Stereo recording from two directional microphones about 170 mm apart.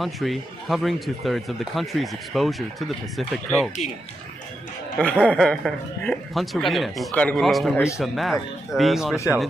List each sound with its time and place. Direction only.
0.0 s speech: centre (ahead or behind)
4.9 s speech: 5° left (ahead or behind)
7.7 s a man's voice: 15° left (ahead or behind)
8.0 s speech: centre (ahead or behind)